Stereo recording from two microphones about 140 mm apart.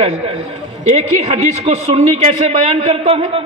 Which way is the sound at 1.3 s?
55° right (ahead or behind).